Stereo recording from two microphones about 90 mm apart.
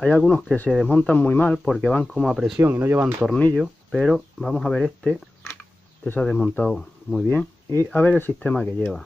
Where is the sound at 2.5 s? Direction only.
25° right (ahead or behind).